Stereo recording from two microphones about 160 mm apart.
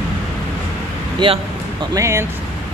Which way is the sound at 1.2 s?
30° right (ahead or behind).